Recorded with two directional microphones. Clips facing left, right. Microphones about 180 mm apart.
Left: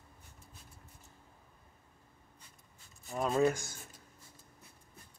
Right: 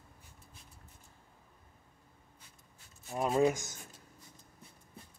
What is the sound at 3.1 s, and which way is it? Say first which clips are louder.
Speech: right 1 dB; 15° right (ahead or behind).